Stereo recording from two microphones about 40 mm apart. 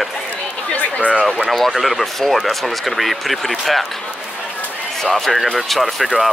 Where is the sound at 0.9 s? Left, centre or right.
Left.